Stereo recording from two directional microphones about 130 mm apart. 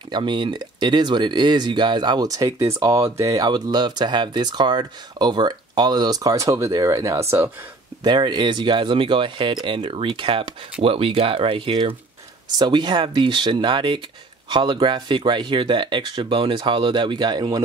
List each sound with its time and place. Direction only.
0.1 s speech: 35° right (ahead or behind); by 7.5 s 20° right (ahead or behind)
8.0 s speech: 35° right (ahead or behind)